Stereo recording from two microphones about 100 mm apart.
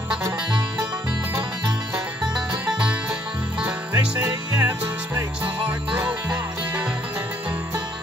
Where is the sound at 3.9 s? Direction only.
20° right (ahead or behind).